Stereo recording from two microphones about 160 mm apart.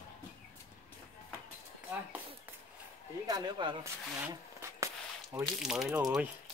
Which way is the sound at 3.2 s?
25° right (ahead or behind).